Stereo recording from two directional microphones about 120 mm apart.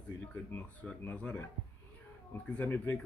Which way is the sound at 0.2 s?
10° left (ahead or behind).